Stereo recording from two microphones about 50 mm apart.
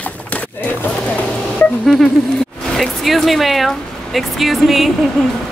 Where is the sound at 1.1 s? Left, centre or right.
Left.